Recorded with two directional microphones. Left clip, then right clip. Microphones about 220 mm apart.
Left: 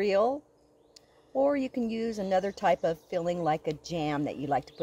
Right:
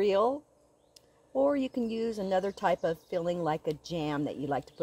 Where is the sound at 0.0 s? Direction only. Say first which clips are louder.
Left 1 dB; 15° right (ahead or behind).